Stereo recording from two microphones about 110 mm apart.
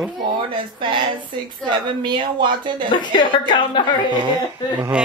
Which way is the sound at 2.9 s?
45° left (ahead or behind).